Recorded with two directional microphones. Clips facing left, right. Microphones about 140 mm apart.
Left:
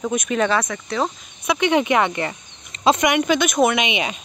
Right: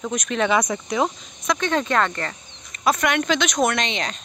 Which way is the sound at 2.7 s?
25° left (ahead or behind).